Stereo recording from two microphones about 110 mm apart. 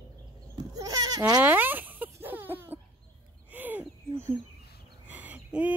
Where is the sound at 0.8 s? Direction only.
35° right (ahead or behind).